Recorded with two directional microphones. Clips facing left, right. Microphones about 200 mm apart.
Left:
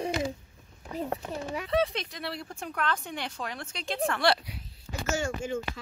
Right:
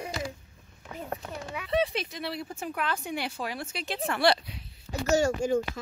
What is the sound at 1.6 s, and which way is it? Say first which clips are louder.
Speech: right 1 dB; 5° right (ahead or behind).